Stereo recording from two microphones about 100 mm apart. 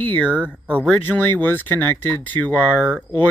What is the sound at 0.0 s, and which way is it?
Speech, 15° left (ahead or behind).